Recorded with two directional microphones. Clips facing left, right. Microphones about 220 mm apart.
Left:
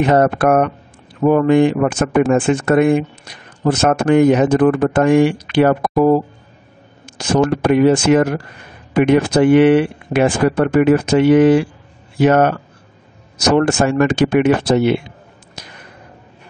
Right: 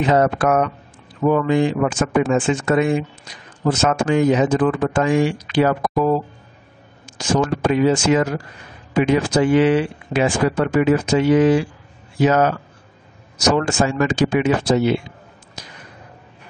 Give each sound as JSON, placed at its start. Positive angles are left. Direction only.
{"t": 0.0, "sound": "speech", "side_deg": 55}
{"t": 7.2, "sound": "speech", "side_deg": 60}
{"t": 13.6, "sound": "speech", "side_deg": 60}
{"t": 15.6, "sound": "a sound", "side_deg": 60}